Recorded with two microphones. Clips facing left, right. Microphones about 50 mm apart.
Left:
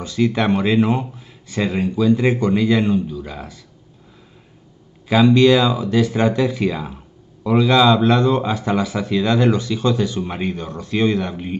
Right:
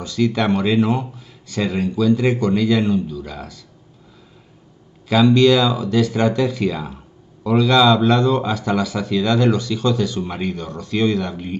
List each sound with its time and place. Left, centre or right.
0.0 s a man's voice: left
5.0 s a man's voice: left